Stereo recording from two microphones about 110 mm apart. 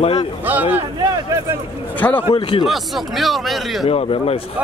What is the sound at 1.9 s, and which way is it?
Speech, 15° left (ahead or behind).